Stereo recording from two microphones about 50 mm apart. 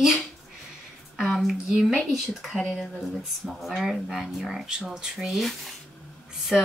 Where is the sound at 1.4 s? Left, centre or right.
Centre.